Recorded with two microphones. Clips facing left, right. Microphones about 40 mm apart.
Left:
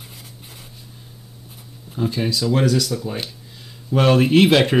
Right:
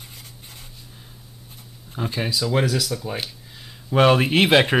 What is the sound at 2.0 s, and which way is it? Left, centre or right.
Speech, centre.